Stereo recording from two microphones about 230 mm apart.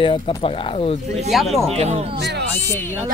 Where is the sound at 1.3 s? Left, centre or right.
Centre.